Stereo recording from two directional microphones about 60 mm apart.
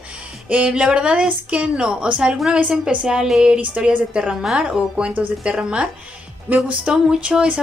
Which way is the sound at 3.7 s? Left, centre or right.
Right.